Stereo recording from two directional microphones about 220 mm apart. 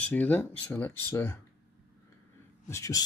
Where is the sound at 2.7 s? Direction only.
15° left (ahead or behind).